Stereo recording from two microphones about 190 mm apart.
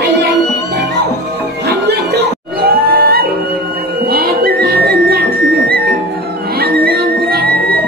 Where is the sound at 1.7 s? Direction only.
60° right (ahead or behind).